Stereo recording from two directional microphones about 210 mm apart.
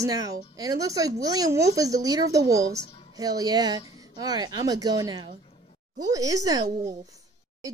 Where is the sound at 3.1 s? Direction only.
15° right (ahead or behind).